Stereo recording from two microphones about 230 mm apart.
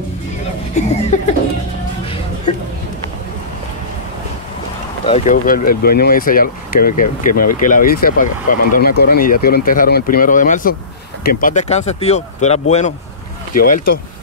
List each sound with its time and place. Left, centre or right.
0.8 s speech: left
5.0 s speech: left